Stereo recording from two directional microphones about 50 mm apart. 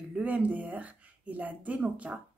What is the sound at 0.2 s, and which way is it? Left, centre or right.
Speech, right.